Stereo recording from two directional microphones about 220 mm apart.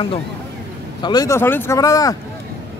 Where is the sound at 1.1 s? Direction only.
15° left (ahead or behind).